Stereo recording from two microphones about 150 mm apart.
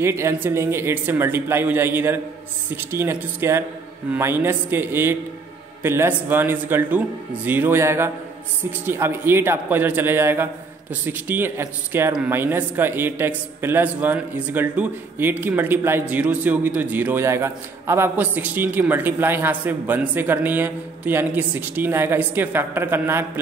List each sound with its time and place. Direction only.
0.0 s a man's voice: 20° right (ahead or behind)